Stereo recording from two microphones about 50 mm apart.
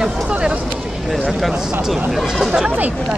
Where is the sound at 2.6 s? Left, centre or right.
Right.